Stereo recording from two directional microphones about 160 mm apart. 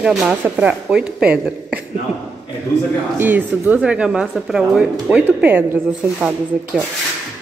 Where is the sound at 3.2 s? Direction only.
10° right (ahead or behind).